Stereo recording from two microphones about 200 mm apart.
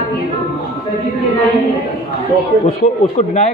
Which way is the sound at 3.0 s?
35° left (ahead or behind).